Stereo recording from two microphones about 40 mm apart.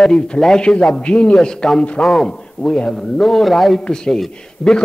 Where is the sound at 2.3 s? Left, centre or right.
Left.